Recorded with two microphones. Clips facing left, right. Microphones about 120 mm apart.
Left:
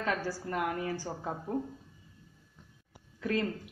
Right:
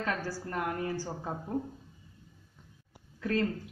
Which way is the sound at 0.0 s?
15° left (ahead or behind).